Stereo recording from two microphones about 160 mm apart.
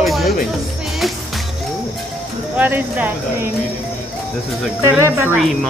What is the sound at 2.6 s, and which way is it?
Speech, 10° right (ahead or behind).